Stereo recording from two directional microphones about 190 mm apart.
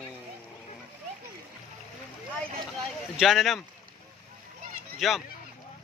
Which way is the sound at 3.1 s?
Centre (ahead or behind).